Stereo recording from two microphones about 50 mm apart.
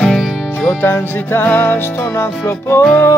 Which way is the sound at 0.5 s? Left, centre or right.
Left.